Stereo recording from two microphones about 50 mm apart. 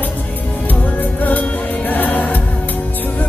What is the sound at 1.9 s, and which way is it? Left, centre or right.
Music, left.